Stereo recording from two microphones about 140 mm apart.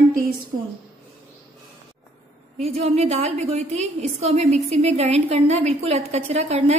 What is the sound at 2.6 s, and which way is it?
A woman's voice, 50° right (ahead or behind).